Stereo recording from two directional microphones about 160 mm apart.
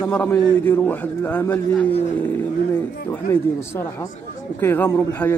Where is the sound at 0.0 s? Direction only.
10° left (ahead or behind).